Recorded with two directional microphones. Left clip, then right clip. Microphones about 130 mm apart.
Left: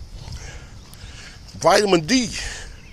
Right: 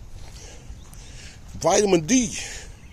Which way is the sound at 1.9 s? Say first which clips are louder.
Left 2 dB; 15° right (ahead or behind).